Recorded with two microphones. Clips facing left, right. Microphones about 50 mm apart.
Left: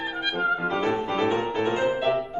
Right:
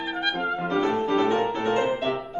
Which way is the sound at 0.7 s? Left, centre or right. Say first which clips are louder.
Right 2 dB; centre.